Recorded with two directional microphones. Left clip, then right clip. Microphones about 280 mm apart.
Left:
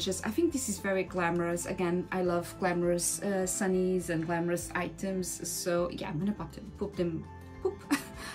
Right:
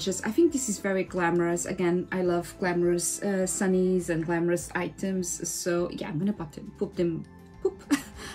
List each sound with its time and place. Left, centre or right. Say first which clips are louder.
0.0 s speech: right 6 dB; centre